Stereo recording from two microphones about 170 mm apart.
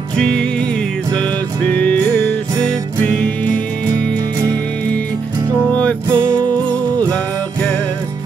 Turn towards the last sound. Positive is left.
turn(degrees=10)  # may be behind; listen again after turning